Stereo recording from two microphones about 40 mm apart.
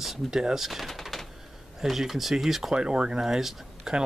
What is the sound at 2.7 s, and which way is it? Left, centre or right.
Speech, centre.